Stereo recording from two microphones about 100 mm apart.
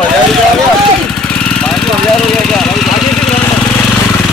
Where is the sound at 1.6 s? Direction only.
10° left (ahead or behind).